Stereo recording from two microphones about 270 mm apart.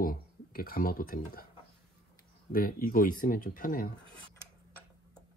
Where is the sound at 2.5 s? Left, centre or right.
Left.